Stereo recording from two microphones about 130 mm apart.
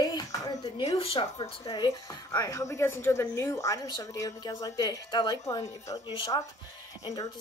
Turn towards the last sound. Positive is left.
turn(degrees=30)  # may be behind; listen again after turning